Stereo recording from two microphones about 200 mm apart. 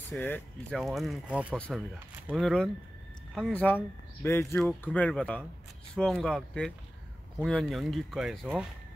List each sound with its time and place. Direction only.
0.1 s speech: 5° left (ahead or behind)